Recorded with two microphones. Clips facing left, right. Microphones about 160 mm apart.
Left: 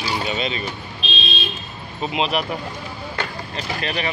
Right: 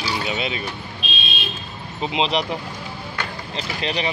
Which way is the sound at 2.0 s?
25° right (ahead or behind).